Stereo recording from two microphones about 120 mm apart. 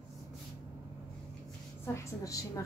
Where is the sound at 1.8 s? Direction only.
25° left (ahead or behind).